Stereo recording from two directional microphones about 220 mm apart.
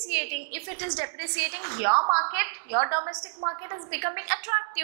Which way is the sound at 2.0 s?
30° right (ahead or behind).